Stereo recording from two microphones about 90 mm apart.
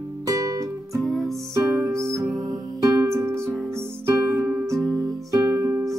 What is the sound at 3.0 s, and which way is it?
Music, 30° right (ahead or behind).